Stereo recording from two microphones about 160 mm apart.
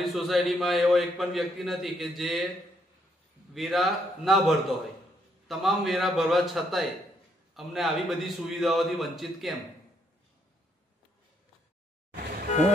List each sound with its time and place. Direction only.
0.0 s a man's voice: centre (ahead or behind)
3.5 s a man's voice: centre (ahead or behind)